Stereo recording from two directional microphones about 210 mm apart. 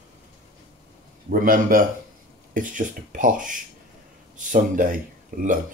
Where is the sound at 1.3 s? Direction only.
40° right (ahead or behind).